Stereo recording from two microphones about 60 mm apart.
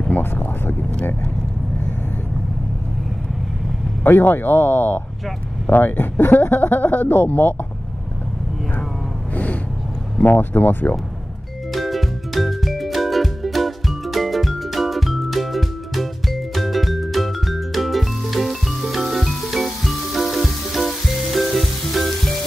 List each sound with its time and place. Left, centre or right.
0.1 s speech: left
4.0 s speech: left
9.3 s a sound: left
10.2 s speech: left
11.7 s music: centre